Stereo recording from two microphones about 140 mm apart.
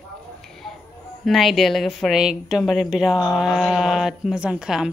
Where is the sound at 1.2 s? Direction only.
Centre (ahead or behind).